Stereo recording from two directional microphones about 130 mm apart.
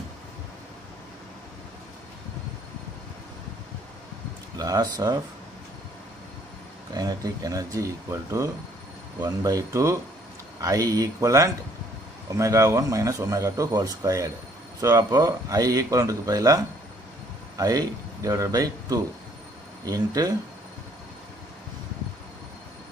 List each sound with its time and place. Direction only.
4.6 s speech: 30° right (ahead or behind)
6.9 s speech: 30° right (ahead or behind)